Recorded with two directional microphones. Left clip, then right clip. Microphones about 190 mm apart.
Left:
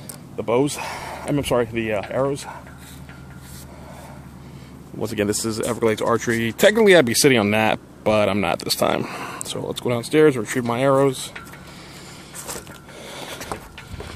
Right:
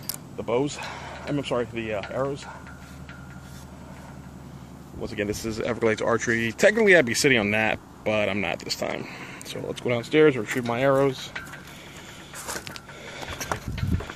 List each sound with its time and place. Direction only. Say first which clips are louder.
0.4 s speech: left 6 dB; 45° left (ahead or behind)
5.0 s speech: left 6 dB; 45° left (ahead or behind)
5.7 s speech: left 3 dB; 20° left (ahead or behind)
8.5 s speech: left 9 dB; 40° left (ahead or behind)
9.5 s speech: left 2 dB; 25° left (ahead or behind)
13.1 s a sound: left 2 dB; 25° left (ahead or behind)